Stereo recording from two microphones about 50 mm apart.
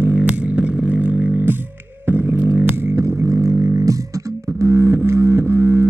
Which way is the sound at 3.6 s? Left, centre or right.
Right.